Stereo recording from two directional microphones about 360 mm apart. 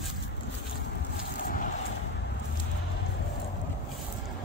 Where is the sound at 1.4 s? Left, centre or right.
Left.